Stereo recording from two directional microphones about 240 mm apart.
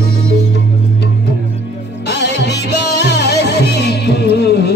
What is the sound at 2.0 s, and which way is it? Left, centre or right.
Music, left.